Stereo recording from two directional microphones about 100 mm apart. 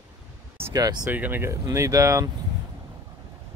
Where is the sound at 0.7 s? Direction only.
40° right (ahead or behind).